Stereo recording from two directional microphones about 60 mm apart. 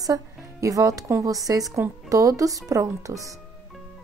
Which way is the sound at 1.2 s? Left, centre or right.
Right.